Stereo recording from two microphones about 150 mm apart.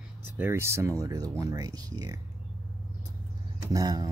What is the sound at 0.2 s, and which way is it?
Speech, 15° right (ahead or behind).